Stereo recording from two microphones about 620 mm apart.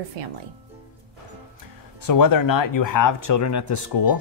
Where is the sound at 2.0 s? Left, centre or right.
Left.